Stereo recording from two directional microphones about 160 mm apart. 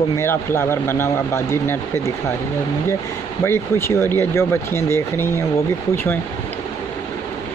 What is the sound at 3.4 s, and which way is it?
Speech, 15° left (ahead or behind).